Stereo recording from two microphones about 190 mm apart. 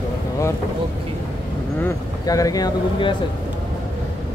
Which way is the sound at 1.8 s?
15° left (ahead or behind).